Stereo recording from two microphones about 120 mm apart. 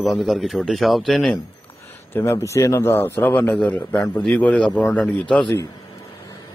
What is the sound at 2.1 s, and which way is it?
A man's voice, 20° left (ahead or behind).